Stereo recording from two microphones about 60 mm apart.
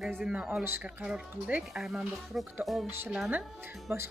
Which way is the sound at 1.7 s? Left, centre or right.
Centre.